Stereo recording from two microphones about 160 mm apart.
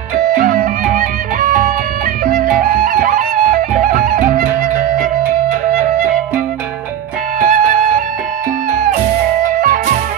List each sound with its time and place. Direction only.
0.3 s music: 60° right (ahead or behind)
7.3 s music: 55° right (ahead or behind)
9.4 s music: 60° right (ahead or behind)